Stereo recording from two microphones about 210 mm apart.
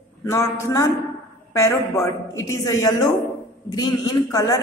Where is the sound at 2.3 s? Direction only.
15° left (ahead or behind).